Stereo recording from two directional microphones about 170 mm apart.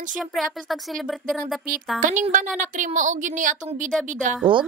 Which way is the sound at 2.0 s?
50° right (ahead or behind).